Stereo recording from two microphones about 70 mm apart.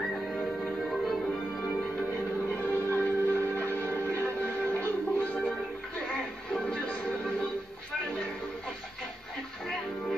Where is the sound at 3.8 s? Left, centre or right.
Right.